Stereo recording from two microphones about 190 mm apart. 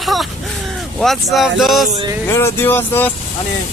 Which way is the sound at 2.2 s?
15° left (ahead or behind).